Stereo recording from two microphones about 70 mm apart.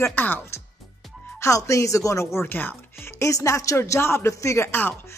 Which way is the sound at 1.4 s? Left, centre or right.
Left.